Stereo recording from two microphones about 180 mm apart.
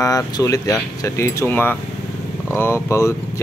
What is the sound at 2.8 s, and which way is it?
Speech, 15° left (ahead or behind).